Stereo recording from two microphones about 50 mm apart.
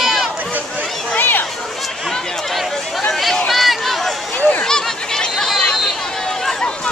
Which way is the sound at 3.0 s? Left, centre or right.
Centre.